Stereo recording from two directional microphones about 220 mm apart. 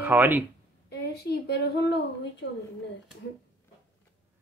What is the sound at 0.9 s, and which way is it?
A woman's voice, 45° left (ahead or behind).